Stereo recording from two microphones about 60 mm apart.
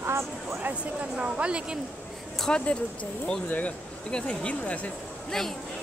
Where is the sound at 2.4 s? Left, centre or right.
Centre.